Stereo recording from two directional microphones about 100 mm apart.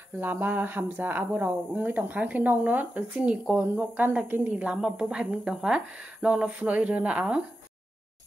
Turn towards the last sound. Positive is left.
turn(degrees=-10)  # may be behind; listen again after turning